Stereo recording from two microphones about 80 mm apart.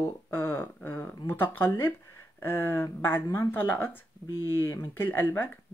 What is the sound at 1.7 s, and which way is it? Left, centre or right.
Speech, left.